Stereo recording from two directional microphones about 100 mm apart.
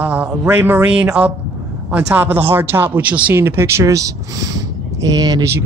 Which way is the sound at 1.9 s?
20° right (ahead or behind).